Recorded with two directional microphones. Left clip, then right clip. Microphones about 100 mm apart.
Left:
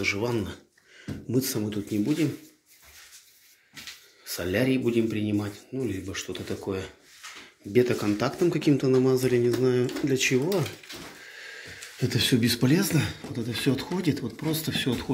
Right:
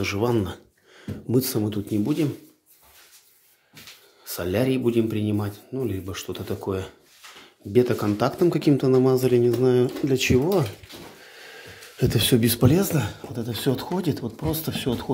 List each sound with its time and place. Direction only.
0.0 s speech: 65° right (ahead or behind)
4.3 s speech: 35° right (ahead or behind)
11.2 s a sound: 45° right (ahead or behind)
12.0 s speech: 70° right (ahead or behind)
12.6 s speech: 35° right (ahead or behind)